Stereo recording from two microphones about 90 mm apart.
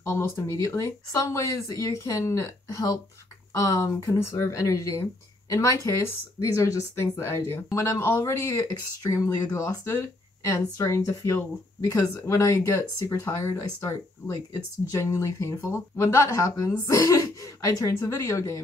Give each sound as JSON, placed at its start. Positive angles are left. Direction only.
{"t": 0.0, "sound": "speech", "side_deg": 30}